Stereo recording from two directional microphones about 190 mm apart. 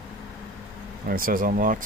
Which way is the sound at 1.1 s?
50° right (ahead or behind).